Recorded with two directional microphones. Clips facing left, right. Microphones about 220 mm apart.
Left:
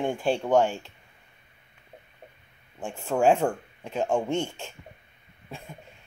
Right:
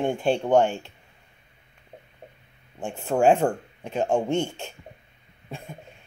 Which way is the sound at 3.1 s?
25° right (ahead or behind).